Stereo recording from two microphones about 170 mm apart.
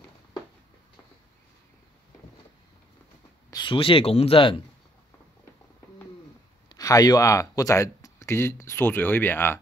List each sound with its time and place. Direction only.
3.4 s speech: 25° left (ahead or behind)
6.7 s speech: 20° left (ahead or behind)